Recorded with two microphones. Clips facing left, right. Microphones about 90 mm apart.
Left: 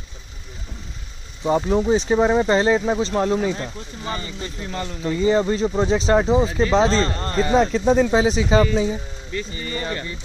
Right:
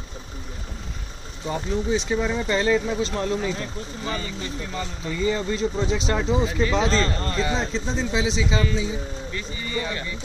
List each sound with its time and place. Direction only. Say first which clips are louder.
1.4 s speech: left 8 dB; 35° left (ahead or behind)